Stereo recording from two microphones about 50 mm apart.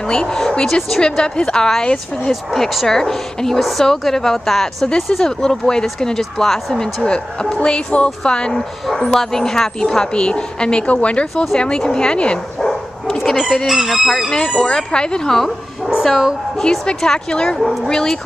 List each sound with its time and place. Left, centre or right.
0.0 s speech: centre
0.7 s chicken: centre
1.0 s speech: centre
2.5 s chicken: centre
2.9 s speech: centre
7.1 s speech: centre
12.5 s bow-wow: centre
13.7 s chicken: centre
14.6 s speech: centre
15.8 s dog: centre
16.5 s speech: centre